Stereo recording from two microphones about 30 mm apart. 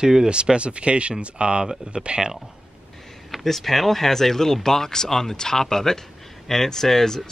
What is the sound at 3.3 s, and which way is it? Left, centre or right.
Speech, centre.